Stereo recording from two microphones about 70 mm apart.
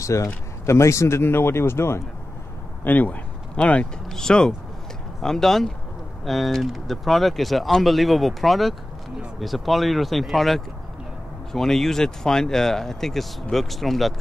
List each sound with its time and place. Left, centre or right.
0.0 s a man's voice: left
2.8 s speech: left; by 14.1 s centre